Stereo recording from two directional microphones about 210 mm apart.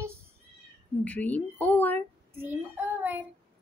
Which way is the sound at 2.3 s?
10° right (ahead or behind).